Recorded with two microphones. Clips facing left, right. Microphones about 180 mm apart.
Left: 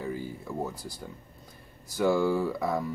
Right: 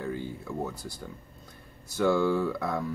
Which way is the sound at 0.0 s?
5° left (ahead or behind).